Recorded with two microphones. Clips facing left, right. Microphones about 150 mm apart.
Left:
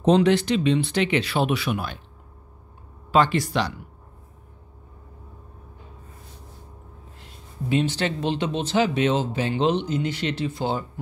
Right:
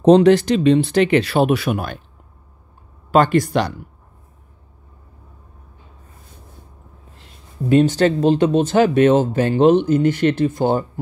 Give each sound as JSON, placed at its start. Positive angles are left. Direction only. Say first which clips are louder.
{"t": 0.0, "sound": "speech", "louder": "right 7 dB", "side_deg": -40}
{"t": 3.1, "sound": "speech", "louder": "right 5 dB", "side_deg": -50}
{"t": 7.7, "sound": "speech", "louder": "right 9 dB", "side_deg": -45}